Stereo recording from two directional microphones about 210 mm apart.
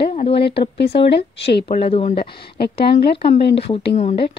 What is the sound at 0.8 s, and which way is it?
Speech, 50° left (ahead or behind).